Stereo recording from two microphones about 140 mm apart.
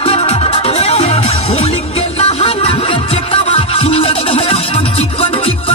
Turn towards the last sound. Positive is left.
turn(degrees=45)  # may be behind; listen again after turning